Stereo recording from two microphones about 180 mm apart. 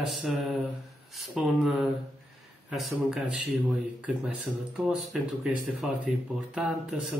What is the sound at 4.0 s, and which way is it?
Speech, 5° right (ahead or behind).